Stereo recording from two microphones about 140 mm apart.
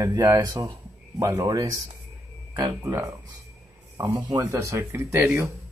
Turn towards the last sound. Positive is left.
turn(degrees=-15)  # may be behind; listen again after turning